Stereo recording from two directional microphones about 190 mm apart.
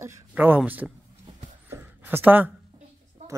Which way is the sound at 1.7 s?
10° right (ahead or behind).